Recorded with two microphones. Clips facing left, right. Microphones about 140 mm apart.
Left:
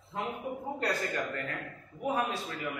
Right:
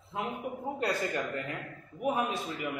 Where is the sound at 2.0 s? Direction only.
15° right (ahead or behind).